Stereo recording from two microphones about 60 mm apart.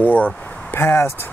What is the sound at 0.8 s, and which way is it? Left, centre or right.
Speech, left.